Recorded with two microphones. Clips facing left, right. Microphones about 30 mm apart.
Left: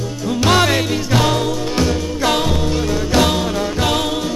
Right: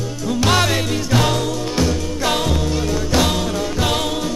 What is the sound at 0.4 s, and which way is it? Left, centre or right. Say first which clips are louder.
Music: left 3 dB; centre.